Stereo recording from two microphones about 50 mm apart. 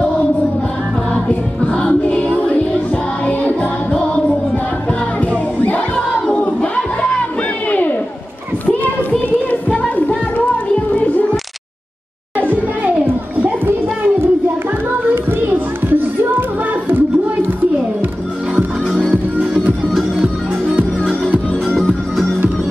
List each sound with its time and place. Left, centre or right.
1.1 s music: left
5.6 s choir: left
6.3 s crowd: left
9.5 s music: left
12.4 s children playing: right
15.4 s music: right
21.7 s music: centre